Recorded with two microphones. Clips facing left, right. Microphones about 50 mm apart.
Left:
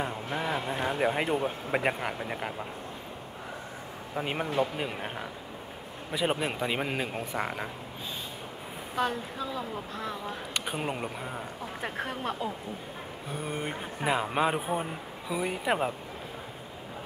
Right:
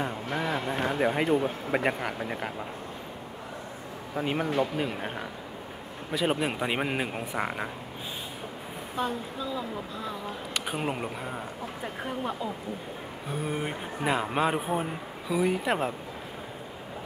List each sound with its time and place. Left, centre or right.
0.3 s a sound: centre
0.8 s speech: centre
4.2 s speech: centre
6.1 s speech: centre
6.6 s speech: centre
8.9 s speech: left
10.5 s speech: centre
11.8 s speech: left
13.3 s speech: centre